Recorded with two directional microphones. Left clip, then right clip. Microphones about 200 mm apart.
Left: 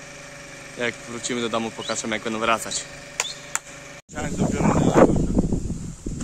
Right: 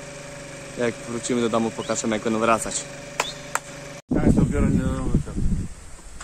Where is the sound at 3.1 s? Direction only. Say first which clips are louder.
Right 2 dB; 40° right (ahead or behind).